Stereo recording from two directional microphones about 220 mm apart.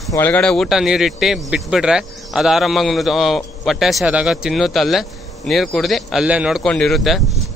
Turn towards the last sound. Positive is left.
turn(degrees=0)  # may be behind; listen again after turning